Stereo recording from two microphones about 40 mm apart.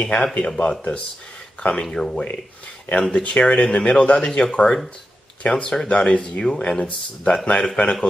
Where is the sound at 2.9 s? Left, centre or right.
Left.